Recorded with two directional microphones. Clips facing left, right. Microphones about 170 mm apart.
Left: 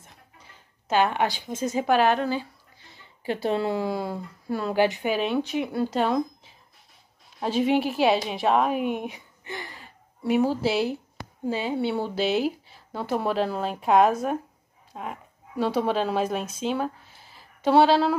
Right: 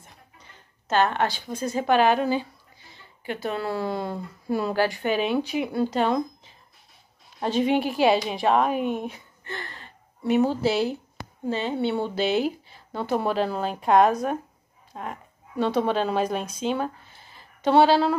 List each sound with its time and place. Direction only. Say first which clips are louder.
0.0 s a sound: right 1 dB; 5° left (ahead or behind)
1.9 s speech: right 2 dB; centre (ahead or behind)
3.3 s speech: left 3 dB; 30° left (ahead or behind)
3.7 s speech: left 1 dB; 10° left (ahead or behind)
4.7 s speech: left 6 dB; 20° left (ahead or behind)
5.0 s speech: right 1 dB; centre (ahead or behind)
8.9 s a sound: right 1 dB; 15° left (ahead or behind)
11.4 s speech: even; 10° left (ahead or behind)